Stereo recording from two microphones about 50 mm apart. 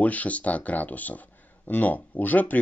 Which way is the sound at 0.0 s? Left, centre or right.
Left.